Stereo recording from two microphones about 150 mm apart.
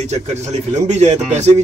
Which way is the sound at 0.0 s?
45° right (ahead or behind).